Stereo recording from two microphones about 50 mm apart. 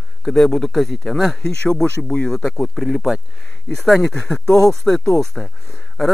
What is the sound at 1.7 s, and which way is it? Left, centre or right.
Speech, centre.